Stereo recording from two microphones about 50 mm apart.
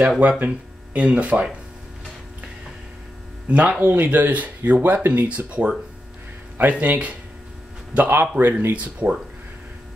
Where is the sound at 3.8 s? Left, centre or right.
Right.